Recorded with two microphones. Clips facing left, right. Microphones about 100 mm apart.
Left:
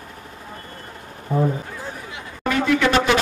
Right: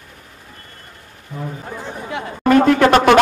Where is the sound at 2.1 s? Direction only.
50° right (ahead or behind).